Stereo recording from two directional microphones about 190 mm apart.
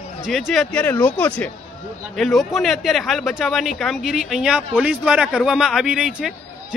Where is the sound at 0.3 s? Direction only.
Centre (ahead or behind).